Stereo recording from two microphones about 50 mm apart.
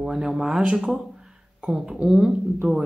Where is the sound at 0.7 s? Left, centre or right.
Centre.